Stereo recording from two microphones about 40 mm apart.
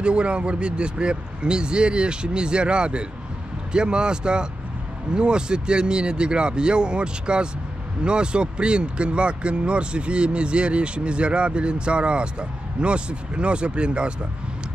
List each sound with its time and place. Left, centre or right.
0.0 s speech: right